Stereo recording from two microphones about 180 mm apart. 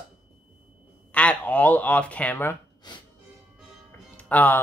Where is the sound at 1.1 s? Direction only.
5° left (ahead or behind).